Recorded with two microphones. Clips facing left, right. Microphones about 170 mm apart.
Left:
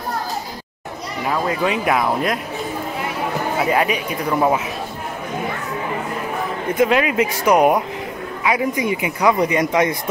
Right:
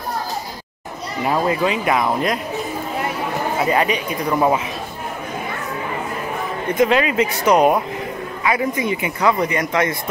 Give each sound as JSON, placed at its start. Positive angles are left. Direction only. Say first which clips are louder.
{"t": 1.6, "sound": "speech", "louder": "even", "side_deg": 0}
{"t": 3.5, "sound": "speech", "louder": "even", "side_deg": 5}
{"t": 6.8, "sound": "speech", "louder": "even", "side_deg": 5}